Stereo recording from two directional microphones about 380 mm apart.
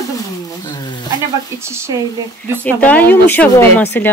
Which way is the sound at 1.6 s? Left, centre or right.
Centre.